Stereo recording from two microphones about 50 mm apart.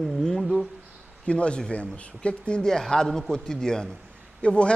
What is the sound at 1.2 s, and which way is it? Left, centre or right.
A man's voice, left.